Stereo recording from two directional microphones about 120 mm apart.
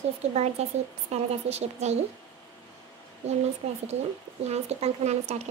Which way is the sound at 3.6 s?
60° right (ahead or behind).